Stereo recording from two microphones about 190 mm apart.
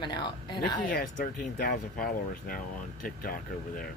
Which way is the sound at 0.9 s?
50° left (ahead or behind).